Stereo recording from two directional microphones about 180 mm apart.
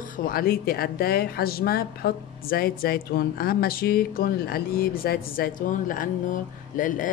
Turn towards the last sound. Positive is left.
turn(degrees=45)  # may be behind; listen again after turning